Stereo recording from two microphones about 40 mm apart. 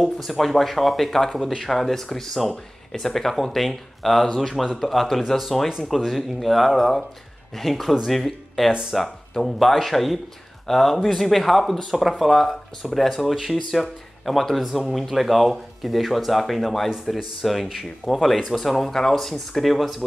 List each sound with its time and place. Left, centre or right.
0.0 s speech: centre